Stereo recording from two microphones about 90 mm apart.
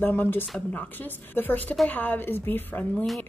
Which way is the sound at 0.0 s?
25° left (ahead or behind).